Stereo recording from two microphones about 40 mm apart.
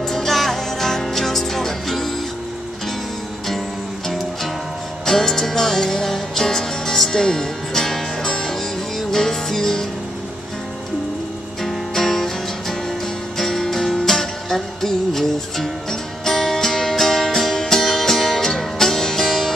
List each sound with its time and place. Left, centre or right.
0.0 s music: centre
5.0 s music: centre
11.6 s music: centre
19.2 s music: centre